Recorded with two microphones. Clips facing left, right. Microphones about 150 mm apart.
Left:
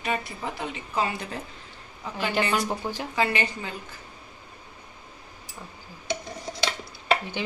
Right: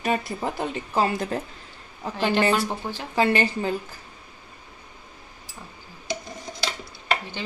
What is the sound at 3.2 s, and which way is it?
Speech, 30° right (ahead or behind).